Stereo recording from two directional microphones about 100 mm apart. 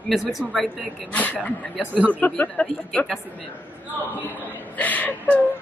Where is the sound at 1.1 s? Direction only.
15° left (ahead or behind).